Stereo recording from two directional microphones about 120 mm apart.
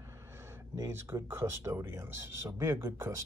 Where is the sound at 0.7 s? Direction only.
25° right (ahead or behind).